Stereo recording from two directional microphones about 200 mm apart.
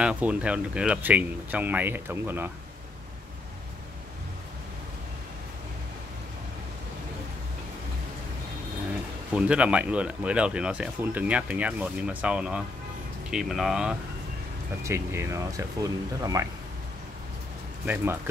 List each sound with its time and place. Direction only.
0.0 s speech: 5° right (ahead or behind)
9.3 s speech: 5° right (ahead or behind)
14.8 s speech: 15° right (ahead or behind)
17.8 s speech: 10° right (ahead or behind)